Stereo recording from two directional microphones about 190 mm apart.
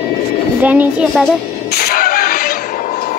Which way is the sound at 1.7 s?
55° left (ahead or behind).